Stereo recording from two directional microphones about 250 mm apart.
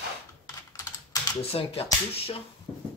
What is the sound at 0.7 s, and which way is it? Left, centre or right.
Typing, centre.